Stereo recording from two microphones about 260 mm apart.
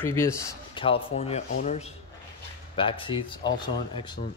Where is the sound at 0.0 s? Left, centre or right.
Centre.